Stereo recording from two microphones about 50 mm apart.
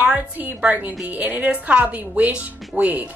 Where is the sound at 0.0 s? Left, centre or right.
Right.